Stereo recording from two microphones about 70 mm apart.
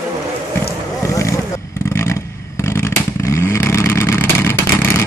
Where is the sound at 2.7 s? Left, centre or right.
Left.